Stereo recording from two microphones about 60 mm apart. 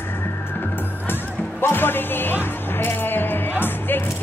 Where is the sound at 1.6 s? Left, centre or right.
Left.